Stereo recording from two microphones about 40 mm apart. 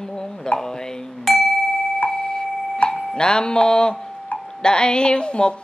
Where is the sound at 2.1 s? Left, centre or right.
Centre.